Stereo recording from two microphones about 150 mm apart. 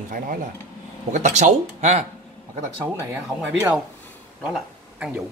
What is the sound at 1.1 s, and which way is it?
Speech, 55° right (ahead or behind).